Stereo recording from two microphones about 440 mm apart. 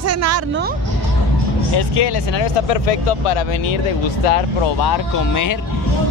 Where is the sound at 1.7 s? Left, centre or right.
Left.